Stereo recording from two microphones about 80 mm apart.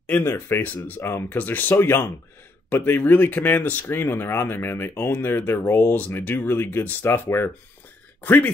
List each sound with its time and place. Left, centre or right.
0.0 s speech: left